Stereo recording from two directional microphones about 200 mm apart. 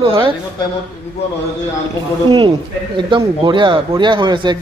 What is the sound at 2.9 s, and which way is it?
Speech, 25° right (ahead or behind).